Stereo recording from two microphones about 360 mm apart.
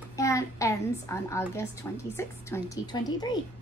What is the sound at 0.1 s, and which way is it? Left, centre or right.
A child's voice, centre.